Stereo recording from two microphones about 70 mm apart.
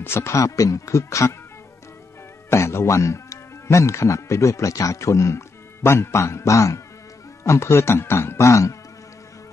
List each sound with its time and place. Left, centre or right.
0.0 s speech: left
2.5 s speech: left